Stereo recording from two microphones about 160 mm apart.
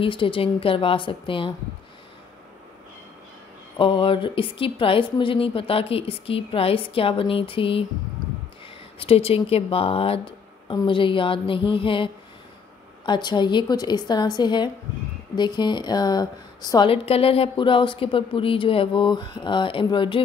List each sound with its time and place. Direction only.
0.0 s a woman's voice: 30° left (ahead or behind)
3.7 s a woman's voice: 30° left (ahead or behind)
9.0 s a woman's voice: 35° left (ahead or behind)